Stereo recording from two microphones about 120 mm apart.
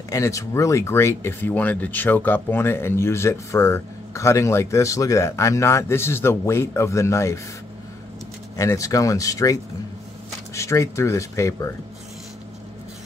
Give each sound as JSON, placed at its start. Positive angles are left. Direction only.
{"t": 0.1, "sound": "speech", "side_deg": 25}
{"t": 8.5, "sound": "speech", "side_deg": 25}